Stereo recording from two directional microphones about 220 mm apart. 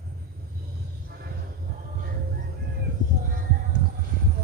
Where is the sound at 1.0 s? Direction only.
45° right (ahead or behind).